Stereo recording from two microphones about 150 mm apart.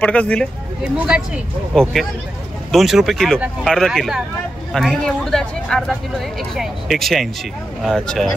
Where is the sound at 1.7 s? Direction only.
5° left (ahead or behind).